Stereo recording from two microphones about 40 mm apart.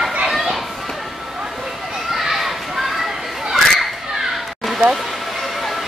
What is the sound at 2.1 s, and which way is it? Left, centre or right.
Children playing, centre.